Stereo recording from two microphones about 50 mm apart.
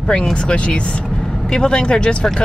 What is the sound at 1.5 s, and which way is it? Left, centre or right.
Speech, centre.